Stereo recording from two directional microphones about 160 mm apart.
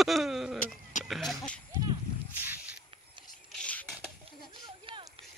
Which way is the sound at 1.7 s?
25° right (ahead or behind).